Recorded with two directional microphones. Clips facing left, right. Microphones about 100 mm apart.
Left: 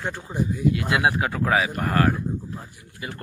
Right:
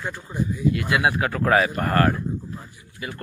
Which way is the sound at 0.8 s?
20° left (ahead or behind).